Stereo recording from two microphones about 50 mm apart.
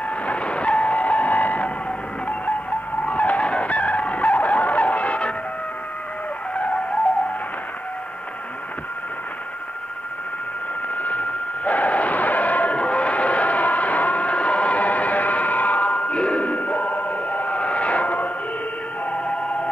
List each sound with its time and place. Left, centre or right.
0.3 s train: left
3.1 s vehicle: left
11.0 s a sound: left